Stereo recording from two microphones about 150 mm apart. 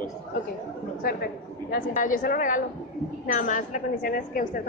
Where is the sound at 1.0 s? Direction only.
90° left.